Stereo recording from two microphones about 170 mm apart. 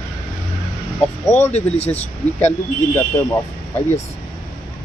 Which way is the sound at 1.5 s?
40° left (ahead or behind).